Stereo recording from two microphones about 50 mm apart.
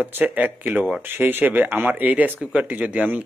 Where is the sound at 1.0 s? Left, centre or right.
Right.